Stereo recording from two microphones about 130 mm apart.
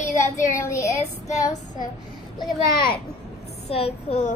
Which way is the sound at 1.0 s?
65° left (ahead or behind).